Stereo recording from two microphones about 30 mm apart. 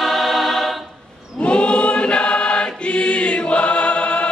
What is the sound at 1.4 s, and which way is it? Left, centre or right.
Choir, left.